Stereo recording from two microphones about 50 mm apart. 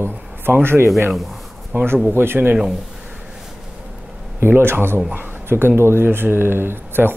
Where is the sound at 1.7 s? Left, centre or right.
Right.